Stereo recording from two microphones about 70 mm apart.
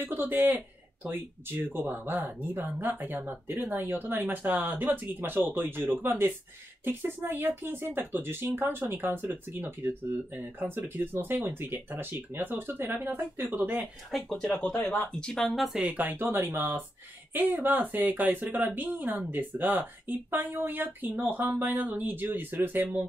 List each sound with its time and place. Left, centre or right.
0.3 s speech: right
13.7 s speech: centre
15.1 s speech: centre
15.8 s speech: right